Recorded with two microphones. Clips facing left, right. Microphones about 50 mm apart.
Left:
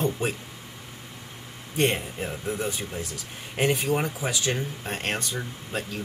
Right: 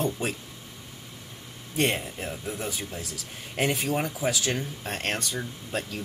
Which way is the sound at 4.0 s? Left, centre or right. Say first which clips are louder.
Right 1 dB; centre.